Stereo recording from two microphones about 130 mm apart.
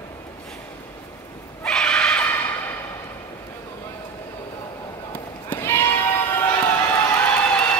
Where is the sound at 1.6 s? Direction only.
5° left (ahead or behind).